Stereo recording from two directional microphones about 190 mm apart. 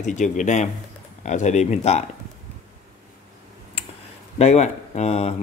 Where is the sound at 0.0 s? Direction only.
40° left (ahead or behind).